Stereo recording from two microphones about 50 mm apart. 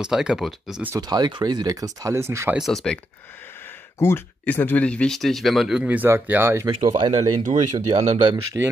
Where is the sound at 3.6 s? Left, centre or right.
Left.